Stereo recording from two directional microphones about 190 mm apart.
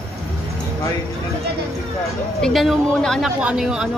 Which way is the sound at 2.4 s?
Centre (ahead or behind).